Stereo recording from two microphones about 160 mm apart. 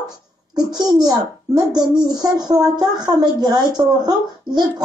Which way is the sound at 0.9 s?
25° right (ahead or behind).